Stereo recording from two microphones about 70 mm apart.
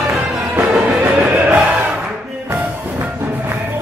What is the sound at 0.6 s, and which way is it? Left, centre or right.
Music, centre.